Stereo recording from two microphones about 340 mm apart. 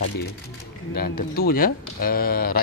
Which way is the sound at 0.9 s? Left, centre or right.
Left.